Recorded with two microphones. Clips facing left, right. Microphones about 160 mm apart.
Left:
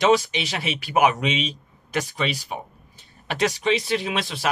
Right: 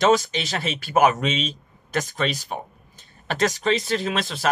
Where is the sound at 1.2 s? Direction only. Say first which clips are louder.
Even; 15° left (ahead or behind).